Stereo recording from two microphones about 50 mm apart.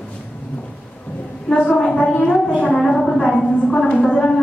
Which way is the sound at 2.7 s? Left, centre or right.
Centre.